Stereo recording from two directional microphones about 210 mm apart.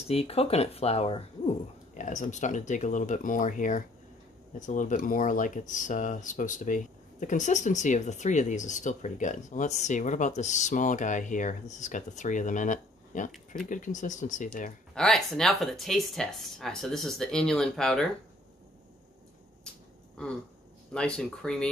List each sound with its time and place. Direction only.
0.0 s speech: 30° left (ahead or behind)
15.0 s speech: centre (ahead or behind)
20.2 s speech: 5° left (ahead or behind)